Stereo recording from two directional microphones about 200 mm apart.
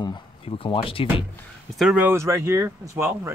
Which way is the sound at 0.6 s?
25° left (ahead or behind).